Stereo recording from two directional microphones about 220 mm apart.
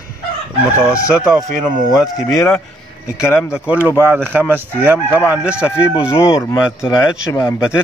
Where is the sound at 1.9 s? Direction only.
15° left (ahead or behind).